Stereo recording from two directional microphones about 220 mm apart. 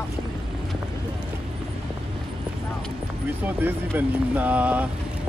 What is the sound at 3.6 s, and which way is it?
Speech, 10° right (ahead or behind).